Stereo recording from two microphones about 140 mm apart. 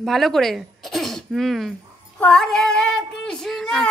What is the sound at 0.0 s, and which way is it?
Speech, centre (ahead or behind).